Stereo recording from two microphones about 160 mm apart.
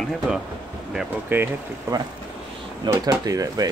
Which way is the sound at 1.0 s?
10° right (ahead or behind).